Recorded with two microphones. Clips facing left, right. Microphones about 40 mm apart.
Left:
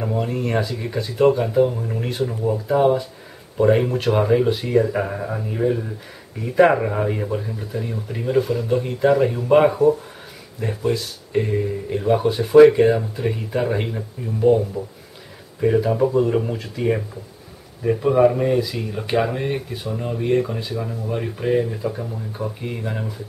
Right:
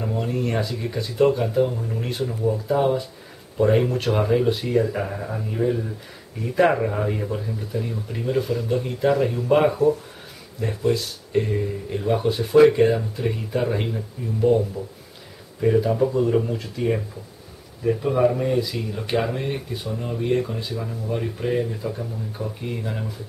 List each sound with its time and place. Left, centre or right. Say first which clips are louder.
0.0 s speech: left 2 dB; centre
2.5 s speech: left 5 dB; centre
10.9 s speech: right 1 dB; centre
18.5 s speech: left 2 dB; centre